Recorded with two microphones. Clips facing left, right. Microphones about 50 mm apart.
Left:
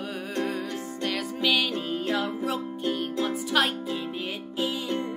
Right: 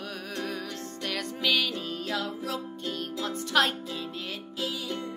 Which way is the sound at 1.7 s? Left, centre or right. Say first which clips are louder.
Left 4 dB; left.